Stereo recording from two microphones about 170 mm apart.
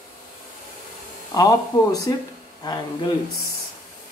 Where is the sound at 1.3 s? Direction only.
20° left (ahead or behind).